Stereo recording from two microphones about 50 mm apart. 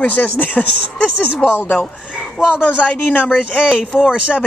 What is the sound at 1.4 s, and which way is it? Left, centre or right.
Speech, centre.